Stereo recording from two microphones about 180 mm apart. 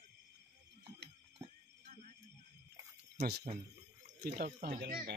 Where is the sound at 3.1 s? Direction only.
65° right (ahead or behind).